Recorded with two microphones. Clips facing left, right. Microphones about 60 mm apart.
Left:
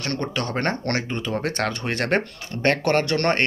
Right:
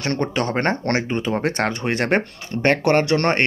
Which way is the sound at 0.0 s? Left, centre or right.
Right.